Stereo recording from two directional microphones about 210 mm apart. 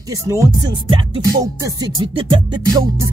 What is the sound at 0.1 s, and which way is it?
Music, 15° right (ahead or behind).